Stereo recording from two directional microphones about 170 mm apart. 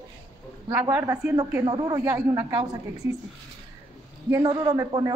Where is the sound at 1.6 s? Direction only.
25° right (ahead or behind).